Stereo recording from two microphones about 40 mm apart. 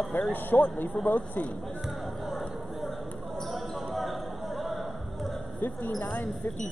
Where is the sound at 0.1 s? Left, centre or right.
Left.